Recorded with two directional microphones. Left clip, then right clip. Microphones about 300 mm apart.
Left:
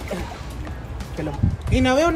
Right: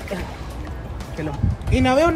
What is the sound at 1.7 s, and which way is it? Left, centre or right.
Speech, centre.